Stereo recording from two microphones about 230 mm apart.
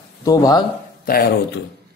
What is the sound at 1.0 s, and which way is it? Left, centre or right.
Speech, left.